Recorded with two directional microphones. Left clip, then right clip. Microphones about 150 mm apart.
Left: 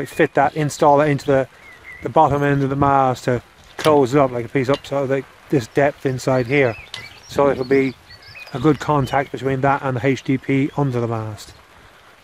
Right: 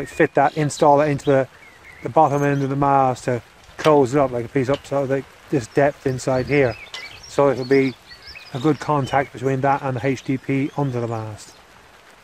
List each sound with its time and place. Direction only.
0.0 s speech: 25° left (ahead or behind)